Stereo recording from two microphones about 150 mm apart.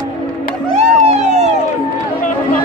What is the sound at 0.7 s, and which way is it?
Music, 50° right (ahead or behind).